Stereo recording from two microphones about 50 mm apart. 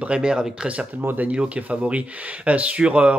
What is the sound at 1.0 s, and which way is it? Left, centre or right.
Speech, right.